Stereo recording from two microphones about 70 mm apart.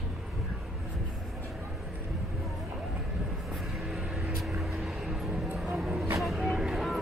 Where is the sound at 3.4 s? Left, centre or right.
Centre.